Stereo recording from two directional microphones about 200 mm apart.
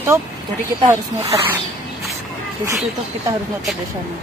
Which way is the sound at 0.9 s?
15° right (ahead or behind).